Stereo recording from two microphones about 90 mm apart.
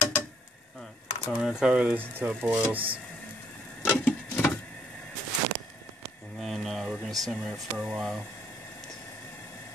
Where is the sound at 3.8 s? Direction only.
15° left (ahead or behind).